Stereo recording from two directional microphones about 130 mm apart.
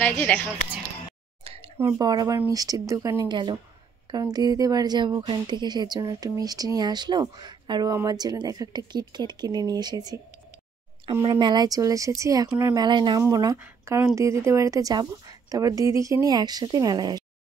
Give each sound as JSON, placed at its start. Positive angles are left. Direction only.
{"t": 0.0, "sound": "a woman's voice", "side_deg": 10}
{"t": 1.4, "sound": "a sound", "side_deg": -50}
{"t": 1.8, "sound": "a woman's voice", "side_deg": -25}
{"t": 11.2, "sound": "a woman's voice", "side_deg": -35}
{"t": 13.6, "sound": "a woman's voice", "side_deg": -20}